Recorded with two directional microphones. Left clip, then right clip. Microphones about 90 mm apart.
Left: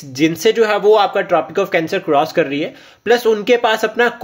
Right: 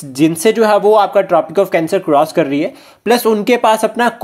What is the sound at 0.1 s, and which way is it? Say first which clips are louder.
Speech: right 2 dB; 30° right (ahead or behind).